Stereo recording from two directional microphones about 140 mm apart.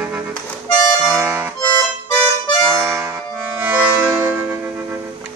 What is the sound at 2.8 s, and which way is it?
Accordion, 20° right (ahead or behind).